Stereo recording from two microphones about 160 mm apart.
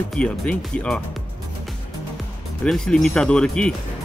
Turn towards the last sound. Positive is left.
turn(degrees=5)  # may be behind; listen again after turning